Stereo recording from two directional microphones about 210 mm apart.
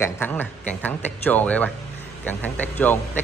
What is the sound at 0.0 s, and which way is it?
A man's voice, 10° left (ahead or behind).